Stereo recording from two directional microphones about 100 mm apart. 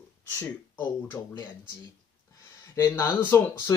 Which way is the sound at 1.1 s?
25° left (ahead or behind).